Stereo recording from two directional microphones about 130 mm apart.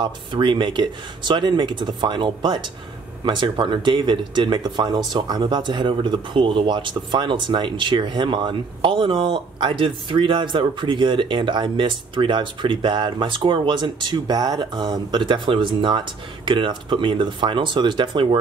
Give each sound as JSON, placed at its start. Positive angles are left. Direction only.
{"t": 0.0, "sound": "speech", "side_deg": -40}